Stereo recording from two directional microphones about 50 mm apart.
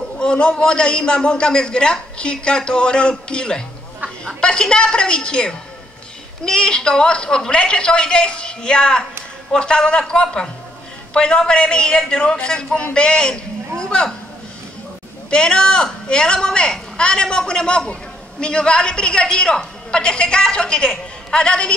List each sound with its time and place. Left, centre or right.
0.2 s a man's voice: centre
15.2 s a man's voice: centre